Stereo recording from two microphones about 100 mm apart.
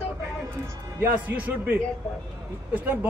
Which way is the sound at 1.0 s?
15° right (ahead or behind).